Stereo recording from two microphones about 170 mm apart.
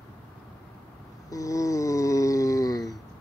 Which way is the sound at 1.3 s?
20° left (ahead or behind).